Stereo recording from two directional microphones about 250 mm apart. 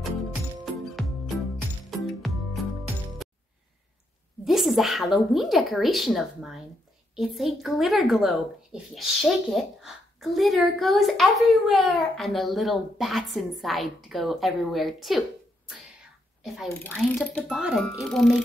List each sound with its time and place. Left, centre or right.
0.9 s music: centre
4.5 s a woman's voice: centre
16.8 s a woman's voice: centre